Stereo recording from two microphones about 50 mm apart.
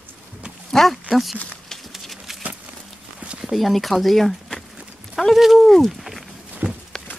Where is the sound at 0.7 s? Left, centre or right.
Centre.